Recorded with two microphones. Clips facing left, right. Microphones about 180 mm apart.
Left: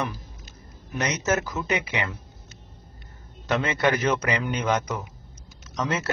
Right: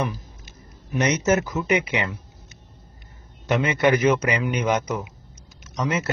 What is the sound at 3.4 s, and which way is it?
Speech, 20° right (ahead or behind).